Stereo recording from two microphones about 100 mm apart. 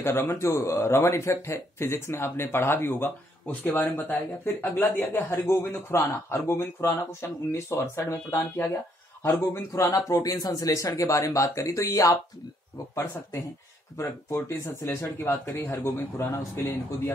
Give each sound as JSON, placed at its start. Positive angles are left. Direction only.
{"t": 0.0, "sound": "speech", "side_deg": 25}
{"t": 13.9, "sound": "speech", "side_deg": 30}